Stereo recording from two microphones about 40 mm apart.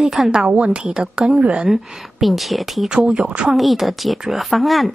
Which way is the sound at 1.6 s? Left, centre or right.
Centre.